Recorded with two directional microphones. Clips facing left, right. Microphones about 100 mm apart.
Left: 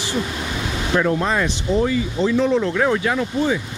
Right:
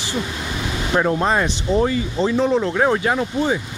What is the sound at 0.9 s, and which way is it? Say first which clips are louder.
Speech: right 1 dB; 25° right (ahead or behind).